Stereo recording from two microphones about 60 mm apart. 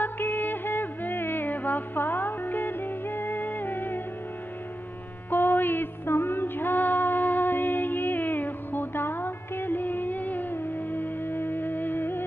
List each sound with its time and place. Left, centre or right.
0.0 s music: left
5.3 s music: left